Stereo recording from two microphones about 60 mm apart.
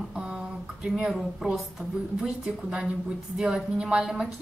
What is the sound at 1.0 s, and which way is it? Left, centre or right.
A woman's voice, centre.